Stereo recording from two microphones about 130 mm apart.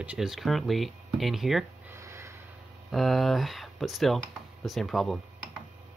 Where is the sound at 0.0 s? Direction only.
5° right (ahead or behind).